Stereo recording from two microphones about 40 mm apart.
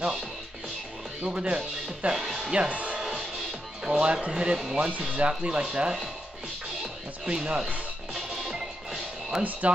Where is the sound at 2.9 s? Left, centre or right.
Centre.